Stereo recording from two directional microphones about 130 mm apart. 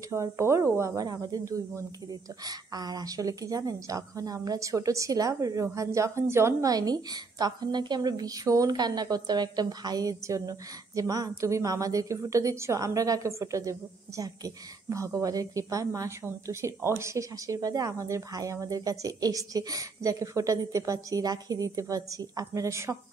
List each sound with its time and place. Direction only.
0.1 s speech: 20° right (ahead or behind)